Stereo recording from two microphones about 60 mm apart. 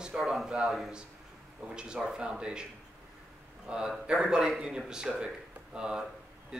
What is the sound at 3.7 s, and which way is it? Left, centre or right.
A man's voice, centre.